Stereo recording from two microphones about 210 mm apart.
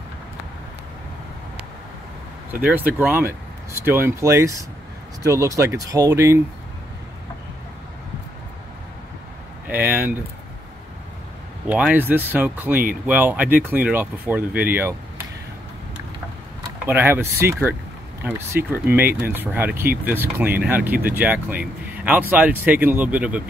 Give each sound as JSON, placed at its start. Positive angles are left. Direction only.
{"t": 2.6, "sound": "speech", "side_deg": -10}
{"t": 9.7, "sound": "speech", "side_deg": -10}
{"t": 11.6, "sound": "speech", "side_deg": -5}
{"t": 16.8, "sound": "speech", "side_deg": -10}